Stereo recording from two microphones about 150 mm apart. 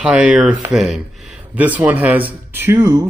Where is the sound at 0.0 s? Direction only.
10° right (ahead or behind).